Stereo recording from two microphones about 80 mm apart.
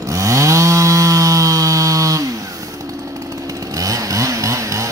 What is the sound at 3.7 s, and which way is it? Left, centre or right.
Chainsaw, right.